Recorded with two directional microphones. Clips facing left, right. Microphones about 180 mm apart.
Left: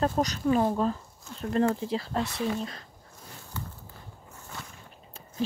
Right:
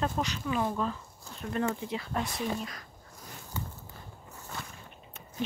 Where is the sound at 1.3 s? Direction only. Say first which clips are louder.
Left 4 dB; 35° right (ahead or behind).